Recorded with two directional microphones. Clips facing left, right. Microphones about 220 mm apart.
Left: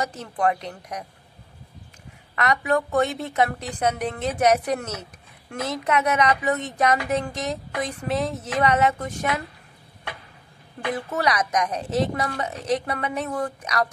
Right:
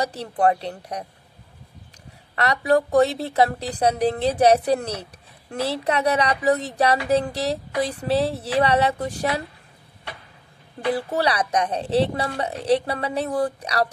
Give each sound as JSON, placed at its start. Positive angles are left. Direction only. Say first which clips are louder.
{"t": 0.0, "sound": "speech", "louder": "right 3 dB", "side_deg": -35}
{"t": 2.3, "sound": "speech", "louder": "right 3 dB", "side_deg": -35}
{"t": 10.9, "sound": "speech", "louder": "right 3 dB", "side_deg": -35}